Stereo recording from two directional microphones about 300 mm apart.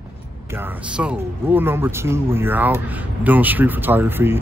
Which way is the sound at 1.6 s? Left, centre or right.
Centre.